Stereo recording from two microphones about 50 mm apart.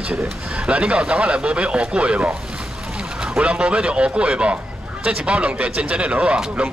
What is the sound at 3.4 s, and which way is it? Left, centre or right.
Speech, right.